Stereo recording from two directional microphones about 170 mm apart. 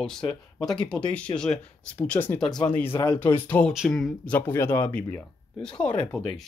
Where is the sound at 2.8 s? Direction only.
30° left (ahead or behind).